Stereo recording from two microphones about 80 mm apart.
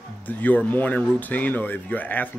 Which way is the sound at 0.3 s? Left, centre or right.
Left.